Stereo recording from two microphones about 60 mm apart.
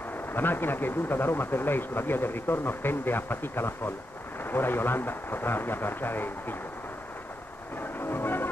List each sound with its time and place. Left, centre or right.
0.3 s speech: left
8.0 s music: left